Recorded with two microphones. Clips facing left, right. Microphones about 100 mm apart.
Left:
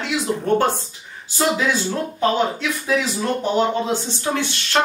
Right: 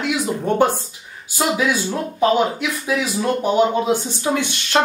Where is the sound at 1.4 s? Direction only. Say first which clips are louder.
Even; 10° right (ahead or behind).